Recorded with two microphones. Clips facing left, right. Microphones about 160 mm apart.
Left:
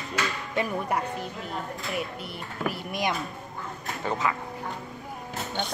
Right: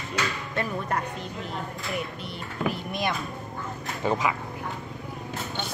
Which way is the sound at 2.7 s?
15° left (ahead or behind).